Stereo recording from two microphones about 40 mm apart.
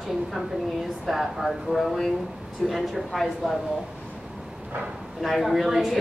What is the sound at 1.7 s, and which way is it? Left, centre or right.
A woman's voice, centre.